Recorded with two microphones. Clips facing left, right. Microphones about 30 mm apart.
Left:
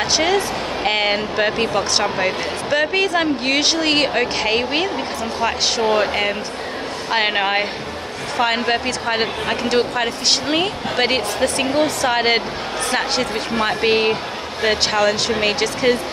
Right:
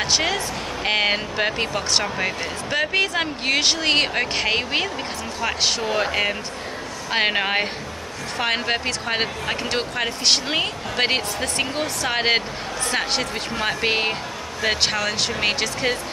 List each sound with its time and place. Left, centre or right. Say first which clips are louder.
0.0 s speech: left 4 dB; centre
5.9 s speech: left 3 dB; centre
13.3 s speech: left 5 dB; centre
13.8 s speech: left 6 dB; centre